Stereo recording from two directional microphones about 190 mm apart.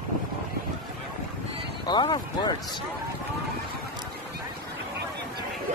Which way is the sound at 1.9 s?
25° left (ahead or behind).